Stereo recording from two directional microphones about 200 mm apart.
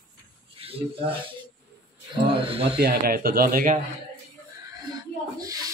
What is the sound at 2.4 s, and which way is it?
Speech, 30° right (ahead or behind).